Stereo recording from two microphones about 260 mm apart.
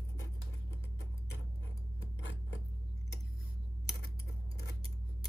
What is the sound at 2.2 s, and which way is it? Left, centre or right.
Scissors, left.